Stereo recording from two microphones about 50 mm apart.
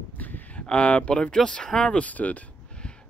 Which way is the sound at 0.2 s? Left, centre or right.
Left.